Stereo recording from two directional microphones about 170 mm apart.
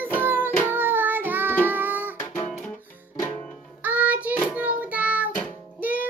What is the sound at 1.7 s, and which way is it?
Music, 10° right (ahead or behind).